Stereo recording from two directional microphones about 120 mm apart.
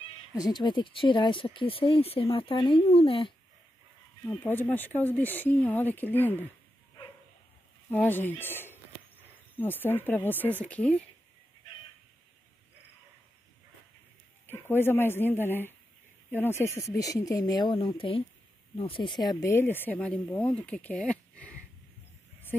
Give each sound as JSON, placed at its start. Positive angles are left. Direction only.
{"t": 0.3, "sound": "speech", "side_deg": 35}
{"t": 4.4, "sound": "speech", "side_deg": 15}
{"t": 7.9, "sound": "speech", "side_deg": 15}
{"t": 14.4, "sound": "speech", "side_deg": 20}
{"t": 19.4, "sound": "speech", "side_deg": 20}
{"t": 22.5, "sound": "a sound", "side_deg": 10}